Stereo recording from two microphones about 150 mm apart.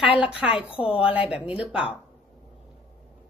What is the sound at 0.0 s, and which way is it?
A woman's voice, 5° right (ahead or behind).